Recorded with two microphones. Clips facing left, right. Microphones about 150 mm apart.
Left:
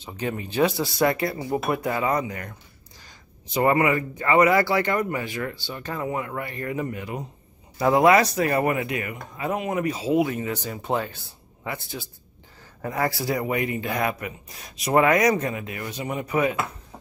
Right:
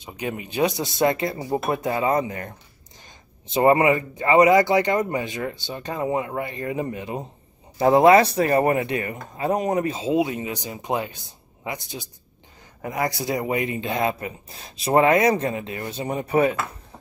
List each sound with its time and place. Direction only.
0.0 s speech: 15° right (ahead or behind); by 9.9 s 35° right (ahead or behind)
9.9 s speech: 20° right (ahead or behind)